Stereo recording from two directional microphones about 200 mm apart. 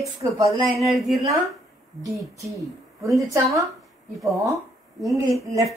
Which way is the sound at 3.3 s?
15° right (ahead or behind).